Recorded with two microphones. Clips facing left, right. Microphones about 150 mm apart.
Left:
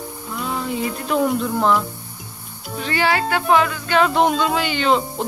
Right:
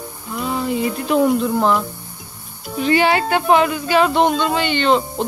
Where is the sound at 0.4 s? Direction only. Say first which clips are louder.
Right 4 dB; 5° right (ahead or behind).